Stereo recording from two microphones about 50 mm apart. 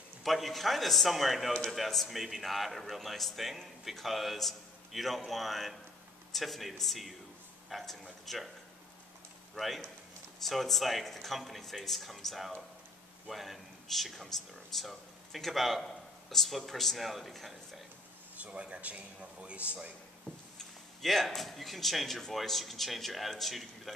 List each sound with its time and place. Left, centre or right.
0.2 s a man's voice: centre
10.4 s a man's voice: centre
18.3 s a man's voice: right
20.5 s a man's voice: centre